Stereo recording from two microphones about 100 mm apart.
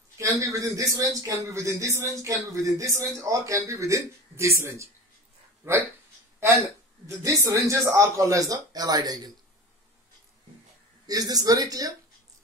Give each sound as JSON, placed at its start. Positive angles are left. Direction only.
{"t": 0.2, "sound": "a man's voice", "side_deg": -35}
{"t": 7.1, "sound": "a man's voice", "side_deg": -35}
{"t": 11.1, "sound": "a man's voice", "side_deg": -40}